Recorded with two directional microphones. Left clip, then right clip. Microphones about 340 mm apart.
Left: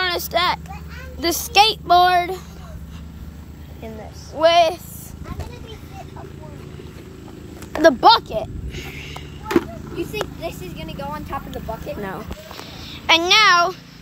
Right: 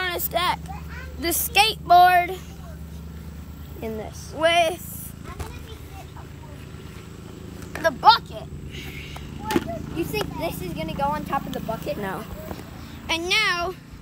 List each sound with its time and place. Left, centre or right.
0.0 s a sound: centre
1.2 s speech: centre
4.4 s speech: centre
7.7 s speech: centre
9.9 s speech: centre
12.0 s speech: centre